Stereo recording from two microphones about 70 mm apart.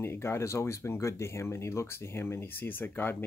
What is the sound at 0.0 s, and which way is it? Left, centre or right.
Speech, left.